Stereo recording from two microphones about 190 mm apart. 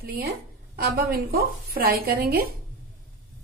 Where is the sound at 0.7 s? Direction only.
55° right (ahead or behind).